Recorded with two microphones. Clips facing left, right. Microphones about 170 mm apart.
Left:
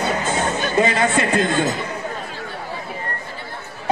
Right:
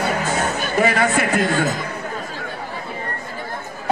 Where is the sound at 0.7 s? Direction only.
25° left (ahead or behind).